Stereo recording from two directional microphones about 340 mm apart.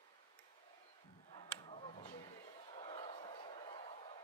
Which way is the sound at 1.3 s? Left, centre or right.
Centre.